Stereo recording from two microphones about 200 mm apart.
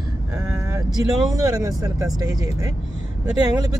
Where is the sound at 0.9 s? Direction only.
20° right (ahead or behind).